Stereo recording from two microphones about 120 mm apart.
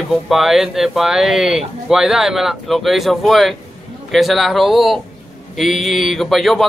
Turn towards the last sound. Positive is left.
turn(degrees=0)  # may be behind; listen again after turning